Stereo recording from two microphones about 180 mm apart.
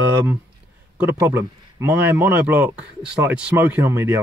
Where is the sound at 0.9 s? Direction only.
10° right (ahead or behind).